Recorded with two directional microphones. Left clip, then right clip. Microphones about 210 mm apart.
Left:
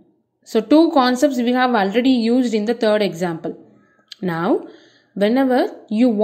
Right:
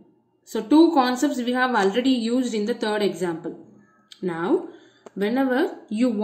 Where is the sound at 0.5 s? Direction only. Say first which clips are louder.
Left 3 dB; 35° left (ahead or behind).